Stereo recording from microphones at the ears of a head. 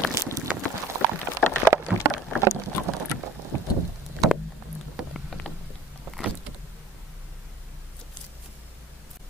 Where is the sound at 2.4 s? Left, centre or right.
Right.